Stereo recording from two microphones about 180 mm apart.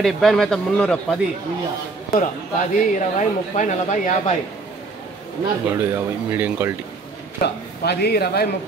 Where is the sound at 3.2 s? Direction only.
45° left (ahead or behind).